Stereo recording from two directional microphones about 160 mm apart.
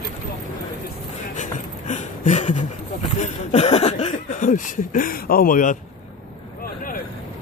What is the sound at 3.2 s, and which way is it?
Speech, 45° left (ahead or behind).